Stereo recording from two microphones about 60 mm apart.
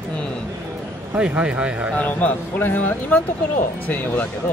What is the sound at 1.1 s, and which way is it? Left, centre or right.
Speech, right.